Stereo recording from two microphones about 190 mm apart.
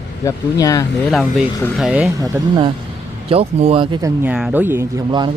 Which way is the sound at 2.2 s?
20° right (ahead or behind).